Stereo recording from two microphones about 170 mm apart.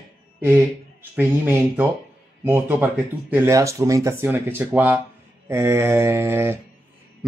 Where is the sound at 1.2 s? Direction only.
10° right (ahead or behind).